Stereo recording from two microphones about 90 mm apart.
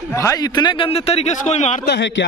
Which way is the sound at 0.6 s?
65° left (ahead or behind).